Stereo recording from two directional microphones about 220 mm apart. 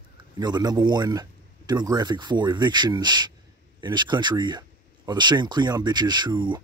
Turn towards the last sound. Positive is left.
turn(degrees=-20)  # may be behind; listen again after turning